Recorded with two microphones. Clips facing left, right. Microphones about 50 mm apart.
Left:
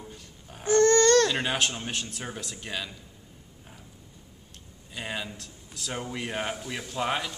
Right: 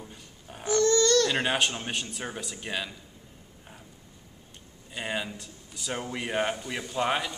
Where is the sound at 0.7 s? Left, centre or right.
Left.